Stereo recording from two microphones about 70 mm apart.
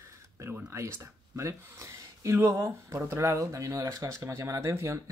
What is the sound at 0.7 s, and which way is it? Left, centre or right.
Speech, right.